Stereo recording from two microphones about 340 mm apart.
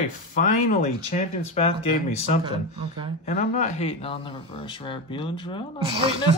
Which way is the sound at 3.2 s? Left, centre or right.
Left.